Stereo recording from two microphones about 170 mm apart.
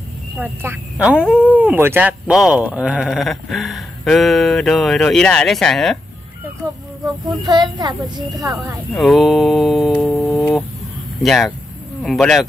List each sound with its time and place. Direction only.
0.4 s speech: 10° right (ahead or behind)
7.2 s a child's voice: 25° right (ahead or behind)
8.9 s speech: centre (ahead or behind)